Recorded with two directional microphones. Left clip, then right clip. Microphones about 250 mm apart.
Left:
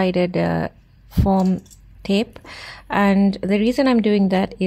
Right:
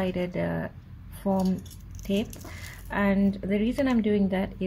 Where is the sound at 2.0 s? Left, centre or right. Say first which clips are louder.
Left 8 dB; left.